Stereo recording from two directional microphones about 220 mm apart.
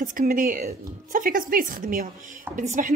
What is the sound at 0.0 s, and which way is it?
A woman's voice, 40° right (ahead or behind).